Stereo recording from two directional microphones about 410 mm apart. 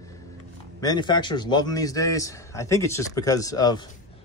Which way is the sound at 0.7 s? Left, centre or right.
Centre.